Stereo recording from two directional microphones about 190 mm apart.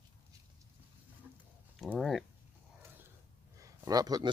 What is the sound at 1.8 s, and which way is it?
Speech, centre (ahead or behind).